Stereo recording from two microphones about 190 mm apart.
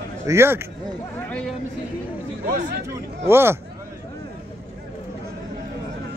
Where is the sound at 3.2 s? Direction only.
15° right (ahead or behind).